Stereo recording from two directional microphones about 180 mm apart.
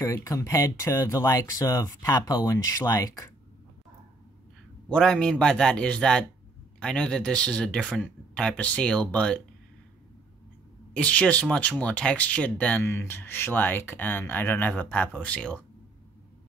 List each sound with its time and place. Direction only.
0.0 s speech: 15° left (ahead or behind)
4.8 s speech: 5° left (ahead or behind)
10.9 s speech: 5° left (ahead or behind)